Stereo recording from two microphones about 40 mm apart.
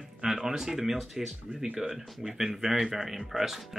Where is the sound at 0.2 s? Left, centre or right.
Centre.